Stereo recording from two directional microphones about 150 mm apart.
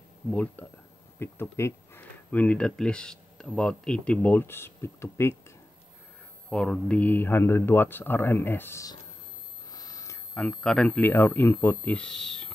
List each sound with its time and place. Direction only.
0.3 s speech: 10° left (ahead or behind)
6.5 s speech: 5° left (ahead or behind)
9.7 s telephone: 25° left (ahead or behind)
10.3 s speech: 5° left (ahead or behind)